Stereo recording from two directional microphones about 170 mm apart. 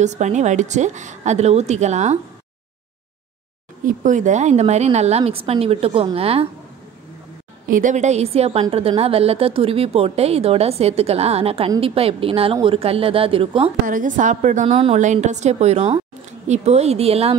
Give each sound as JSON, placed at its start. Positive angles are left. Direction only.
{"t": 0.0, "sound": "a woman's voice", "side_deg": -45}
{"t": 3.8, "sound": "a woman's voice", "side_deg": -50}
{"t": 7.7, "sound": "a woman's voice", "side_deg": -45}
{"t": 13.8, "sound": "a woman's voice", "side_deg": -50}